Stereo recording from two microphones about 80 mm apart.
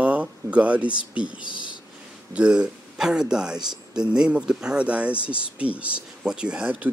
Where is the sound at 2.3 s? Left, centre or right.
Centre.